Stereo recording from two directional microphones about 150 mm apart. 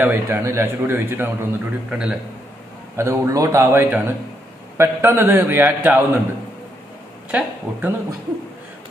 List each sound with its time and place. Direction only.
0.0 s a man's voice: 15° right (ahead or behind)
3.0 s a man's voice: 20° right (ahead or behind)
7.2 s speech: 10° right (ahead or behind)